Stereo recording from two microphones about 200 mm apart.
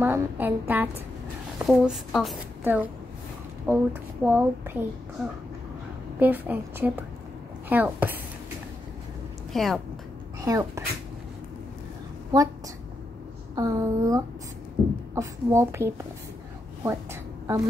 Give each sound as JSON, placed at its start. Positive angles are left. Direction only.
{"t": 0.0, "sound": "a woman's voice", "side_deg": -10}
{"t": 6.1, "sound": "speech", "side_deg": -10}
{"t": 9.5, "sound": "a woman's voice", "side_deg": 0}
{"t": 10.4, "sound": "speech", "side_deg": -15}
{"t": 13.6, "sound": "speech", "side_deg": -15}
{"t": 16.8, "sound": "a sound", "side_deg": -10}